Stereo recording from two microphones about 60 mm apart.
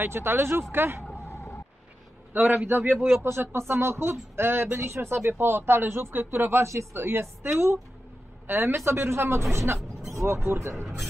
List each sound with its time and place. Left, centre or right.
0.0 s speech: right
1.2 s a sound: left
2.3 s a man's voice: right
3.3 s speech: right
6.7 s speech: right
7.0 s speech: right